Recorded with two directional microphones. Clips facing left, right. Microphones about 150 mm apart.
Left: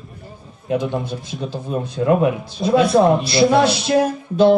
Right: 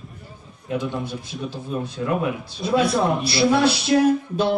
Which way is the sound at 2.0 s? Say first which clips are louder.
Left 9 dB; 45° left (ahead or behind).